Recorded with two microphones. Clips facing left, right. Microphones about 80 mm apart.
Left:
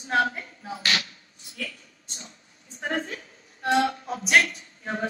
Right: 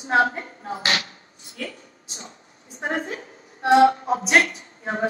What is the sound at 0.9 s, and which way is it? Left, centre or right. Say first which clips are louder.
Chopping: right 2 dB; right.